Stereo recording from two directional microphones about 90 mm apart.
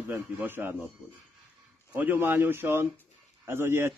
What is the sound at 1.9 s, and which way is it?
Speech, 20° right (ahead or behind).